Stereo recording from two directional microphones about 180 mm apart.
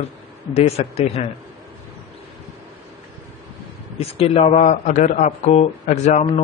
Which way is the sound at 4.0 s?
35° left (ahead or behind).